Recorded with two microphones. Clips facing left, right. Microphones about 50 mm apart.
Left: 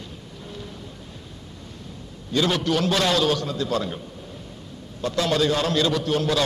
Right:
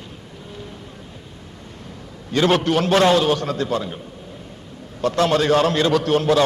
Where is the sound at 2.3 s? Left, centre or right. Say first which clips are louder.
Right 5 dB; right.